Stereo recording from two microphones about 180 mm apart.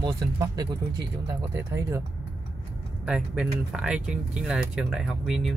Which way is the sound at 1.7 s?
15° right (ahead or behind).